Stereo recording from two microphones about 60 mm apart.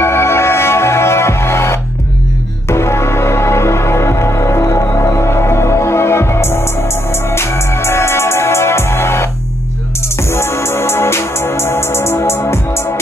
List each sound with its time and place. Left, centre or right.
0.0 s music: left
10.3 s music: left